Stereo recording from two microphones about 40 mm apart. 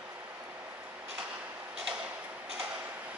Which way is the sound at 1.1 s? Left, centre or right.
Right.